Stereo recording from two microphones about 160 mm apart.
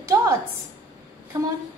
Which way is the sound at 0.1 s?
20° right (ahead or behind).